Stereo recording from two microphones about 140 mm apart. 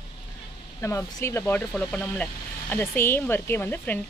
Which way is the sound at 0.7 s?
20° left (ahead or behind).